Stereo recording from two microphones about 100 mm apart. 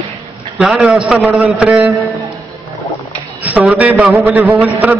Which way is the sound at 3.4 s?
15° right (ahead or behind).